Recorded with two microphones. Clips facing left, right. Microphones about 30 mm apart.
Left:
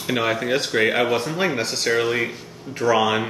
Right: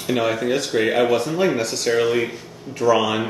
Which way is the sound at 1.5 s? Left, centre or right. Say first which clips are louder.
Right 1 dB; left.